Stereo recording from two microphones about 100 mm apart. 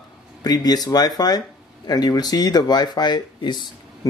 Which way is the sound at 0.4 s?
40° left (ahead or behind).